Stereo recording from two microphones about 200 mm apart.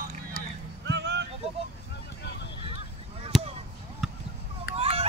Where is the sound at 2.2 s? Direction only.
60° left (ahead or behind).